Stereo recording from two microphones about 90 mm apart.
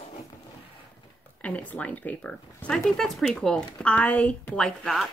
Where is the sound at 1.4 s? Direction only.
15° left (ahead or behind).